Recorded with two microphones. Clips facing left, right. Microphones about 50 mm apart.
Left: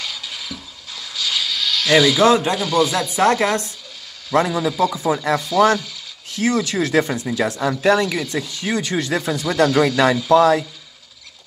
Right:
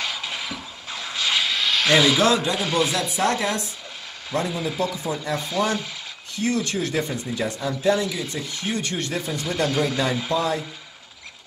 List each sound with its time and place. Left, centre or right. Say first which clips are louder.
0.0 s mechanisms: right 2 dB; right
2.2 s speech: left 5 dB; left
2.5 s speech: left 4 dB; right
3.2 s speech: left 7 dB; left
4.3 s speech: left 7 dB; left
7.3 s speech: left 6 dB; left
10.3 s speech: left 12 dB; left